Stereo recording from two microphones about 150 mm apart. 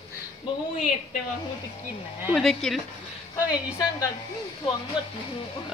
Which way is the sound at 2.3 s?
5° left (ahead or behind).